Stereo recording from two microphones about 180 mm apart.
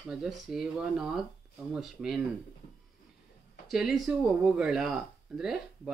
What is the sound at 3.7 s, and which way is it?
Speech, 5° right (ahead or behind).